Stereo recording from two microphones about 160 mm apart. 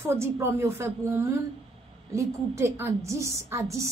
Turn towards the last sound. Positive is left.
turn(degrees=-15)  # may be behind; listen again after turning